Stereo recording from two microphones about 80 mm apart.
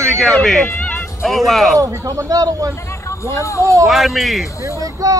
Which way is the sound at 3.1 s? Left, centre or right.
Left.